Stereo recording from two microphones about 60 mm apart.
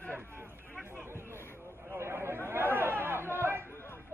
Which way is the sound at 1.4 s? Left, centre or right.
Left.